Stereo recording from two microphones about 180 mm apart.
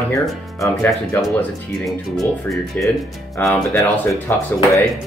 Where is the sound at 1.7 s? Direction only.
Centre (ahead or behind).